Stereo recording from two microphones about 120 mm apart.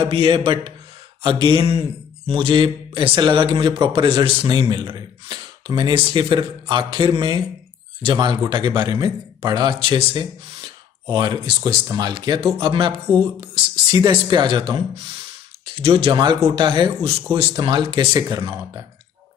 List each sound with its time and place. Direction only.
0.0 s a man's voice: 45° right (ahead or behind)
13.9 s speech: 40° right (ahead or behind)
15.8 s a man's voice: 45° right (ahead or behind)
18.6 s speech: 25° right (ahead or behind)